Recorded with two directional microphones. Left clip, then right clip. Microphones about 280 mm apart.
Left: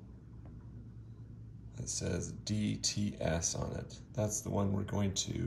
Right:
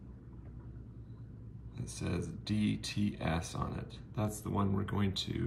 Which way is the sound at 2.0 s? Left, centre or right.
Centre.